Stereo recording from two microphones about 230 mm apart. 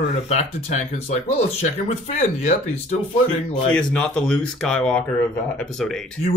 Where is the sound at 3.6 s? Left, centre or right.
Centre.